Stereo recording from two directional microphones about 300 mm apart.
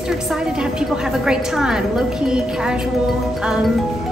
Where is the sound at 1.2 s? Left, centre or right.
Centre.